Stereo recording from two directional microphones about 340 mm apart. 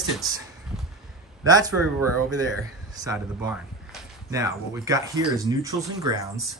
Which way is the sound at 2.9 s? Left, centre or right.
Centre.